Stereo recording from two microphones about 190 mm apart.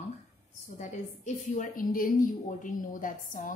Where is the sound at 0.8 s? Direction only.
40° left (ahead or behind).